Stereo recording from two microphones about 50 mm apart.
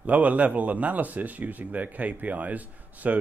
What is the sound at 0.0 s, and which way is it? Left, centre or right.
Speech, right.